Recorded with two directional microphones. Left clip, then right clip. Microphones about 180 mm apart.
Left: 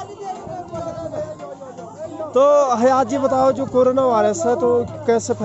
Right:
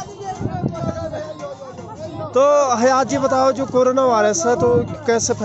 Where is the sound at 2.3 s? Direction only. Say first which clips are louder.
Even; 15° left (ahead or behind).